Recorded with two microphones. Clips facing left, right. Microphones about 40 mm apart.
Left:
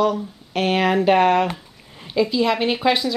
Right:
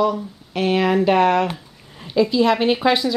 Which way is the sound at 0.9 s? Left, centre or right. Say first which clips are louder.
Left 1 dB; centre.